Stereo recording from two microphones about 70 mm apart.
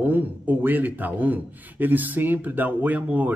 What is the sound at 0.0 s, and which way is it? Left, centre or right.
A man's voice, right.